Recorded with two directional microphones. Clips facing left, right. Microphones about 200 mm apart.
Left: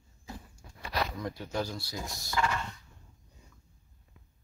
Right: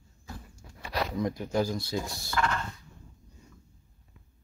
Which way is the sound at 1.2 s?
15° right (ahead or behind).